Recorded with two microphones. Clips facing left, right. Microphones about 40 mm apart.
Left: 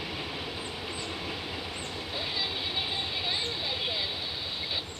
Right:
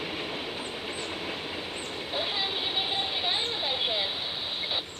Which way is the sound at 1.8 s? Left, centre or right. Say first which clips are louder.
Right 3 dB; right.